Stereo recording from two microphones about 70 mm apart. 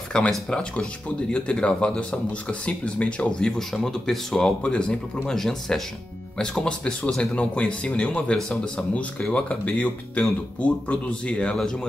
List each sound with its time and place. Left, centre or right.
0.3 s speech: centre